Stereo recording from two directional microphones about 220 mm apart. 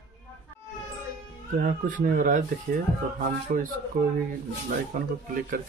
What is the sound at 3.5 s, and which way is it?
Speech, 35° right (ahead or behind).